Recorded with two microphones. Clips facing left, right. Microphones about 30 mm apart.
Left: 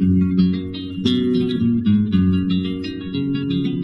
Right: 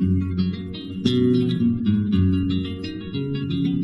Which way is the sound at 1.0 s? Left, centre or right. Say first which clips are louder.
Left 1 dB; left.